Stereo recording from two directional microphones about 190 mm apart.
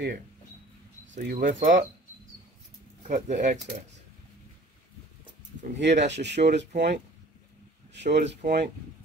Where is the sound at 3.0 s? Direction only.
40° right (ahead or behind).